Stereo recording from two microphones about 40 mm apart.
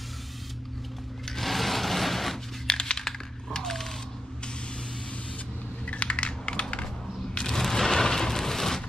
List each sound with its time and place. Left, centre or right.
1.4 s a sound: centre
2.6 s computer keyboard: left
3.5 s typewriter: centre
5.9 s typing: left
7.4 s crushing: centre